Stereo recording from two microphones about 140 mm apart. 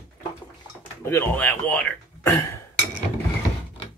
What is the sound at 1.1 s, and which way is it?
Speech, 15° left (ahead or behind).